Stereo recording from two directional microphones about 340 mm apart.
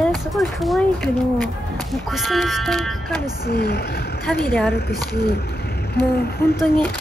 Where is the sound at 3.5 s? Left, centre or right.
Left.